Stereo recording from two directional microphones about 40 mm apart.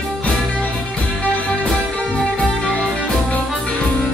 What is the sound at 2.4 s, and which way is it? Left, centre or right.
Music, left.